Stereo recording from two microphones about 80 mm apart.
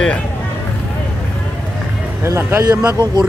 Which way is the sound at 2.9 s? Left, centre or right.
Right.